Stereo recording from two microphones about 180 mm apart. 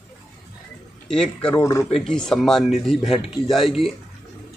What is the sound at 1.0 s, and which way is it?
Speech, 5° left (ahead or behind).